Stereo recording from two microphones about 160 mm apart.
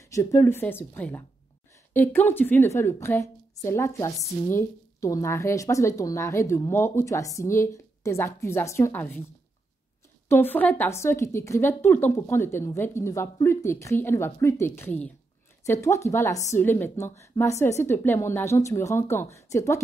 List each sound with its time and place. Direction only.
0.0 s a woman's voice: 20° left (ahead or behind)
10.2 s a woman's voice: 15° left (ahead or behind)